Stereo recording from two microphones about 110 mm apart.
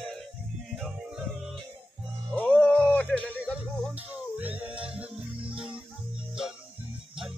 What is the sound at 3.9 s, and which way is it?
Music, 15° right (ahead or behind).